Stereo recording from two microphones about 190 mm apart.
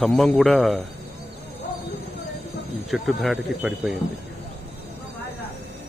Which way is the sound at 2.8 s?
Centre (ahead or behind).